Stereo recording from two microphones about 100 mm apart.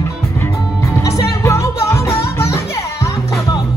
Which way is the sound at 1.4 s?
30° left (ahead or behind).